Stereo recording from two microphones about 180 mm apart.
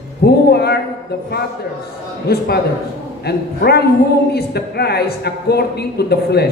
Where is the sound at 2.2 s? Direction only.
60° left (ahead or behind).